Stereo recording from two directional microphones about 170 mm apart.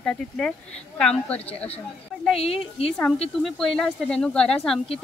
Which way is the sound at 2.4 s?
35° left (ahead or behind).